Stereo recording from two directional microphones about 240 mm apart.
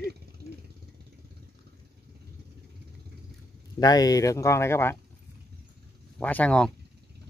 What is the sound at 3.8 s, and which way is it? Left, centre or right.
Speech, centre.